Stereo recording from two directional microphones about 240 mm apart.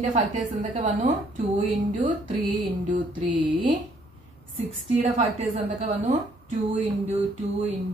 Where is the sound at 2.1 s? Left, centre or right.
Right.